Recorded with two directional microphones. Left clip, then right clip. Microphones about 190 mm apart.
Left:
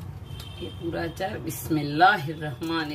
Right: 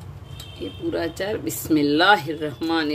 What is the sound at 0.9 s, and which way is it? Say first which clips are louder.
Speech: right 5 dB; 60° right (ahead or behind).